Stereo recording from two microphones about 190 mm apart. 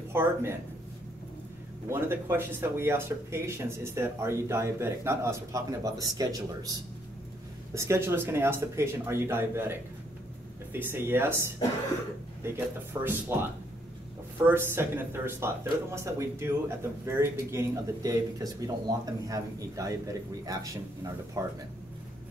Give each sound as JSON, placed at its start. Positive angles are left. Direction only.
{"t": 0.1, "sound": "speech", "side_deg": -15}
{"t": 1.9, "sound": "speech", "side_deg": -15}
{"t": 7.7, "sound": "speech", "side_deg": -15}